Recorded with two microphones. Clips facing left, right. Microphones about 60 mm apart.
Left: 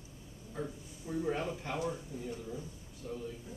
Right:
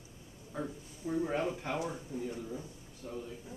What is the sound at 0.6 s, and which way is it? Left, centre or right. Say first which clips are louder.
Speech: right 1 dB; centre.